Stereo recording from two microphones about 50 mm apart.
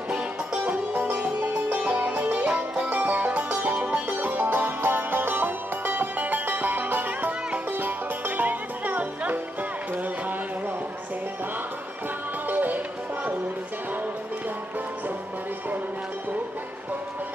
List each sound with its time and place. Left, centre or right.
0.7 s music: right
3.4 s music: right
4.3 s music: right
12.4 s music: right